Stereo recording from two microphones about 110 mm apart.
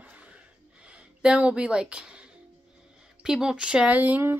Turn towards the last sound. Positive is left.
turn(degrees=-20)  # may be behind; listen again after turning